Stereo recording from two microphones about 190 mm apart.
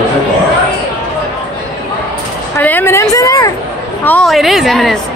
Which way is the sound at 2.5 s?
10° left (ahead or behind).